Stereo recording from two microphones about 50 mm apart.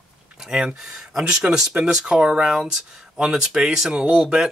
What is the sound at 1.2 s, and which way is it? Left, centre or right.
Speech, right.